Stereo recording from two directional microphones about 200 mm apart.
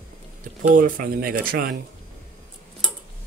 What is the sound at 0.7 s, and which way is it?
Speech, 45° right (ahead or behind).